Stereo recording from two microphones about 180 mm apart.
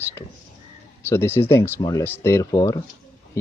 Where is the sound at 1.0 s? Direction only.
15° left (ahead or behind).